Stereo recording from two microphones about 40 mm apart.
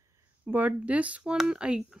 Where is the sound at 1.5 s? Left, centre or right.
Right.